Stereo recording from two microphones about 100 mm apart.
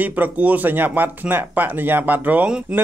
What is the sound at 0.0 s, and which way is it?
Speech, 15° right (ahead or behind).